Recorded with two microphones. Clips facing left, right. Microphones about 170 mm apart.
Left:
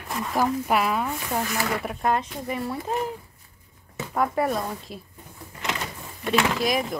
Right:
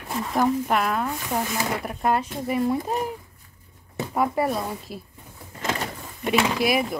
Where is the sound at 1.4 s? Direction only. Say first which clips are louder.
Even; 15° right (ahead or behind).